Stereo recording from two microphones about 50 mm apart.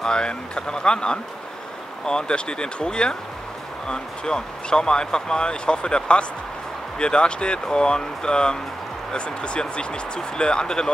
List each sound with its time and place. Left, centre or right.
0.0 s speech: centre